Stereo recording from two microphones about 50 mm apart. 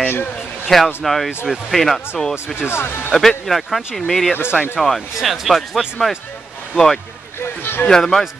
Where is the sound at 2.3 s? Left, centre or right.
Left.